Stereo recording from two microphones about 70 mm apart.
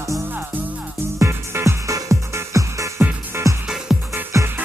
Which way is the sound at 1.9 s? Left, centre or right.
Right.